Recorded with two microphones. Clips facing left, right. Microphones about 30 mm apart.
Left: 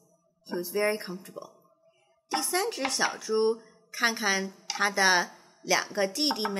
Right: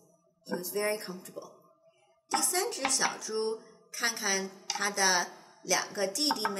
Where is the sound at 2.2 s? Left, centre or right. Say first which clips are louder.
Left 2 dB; left.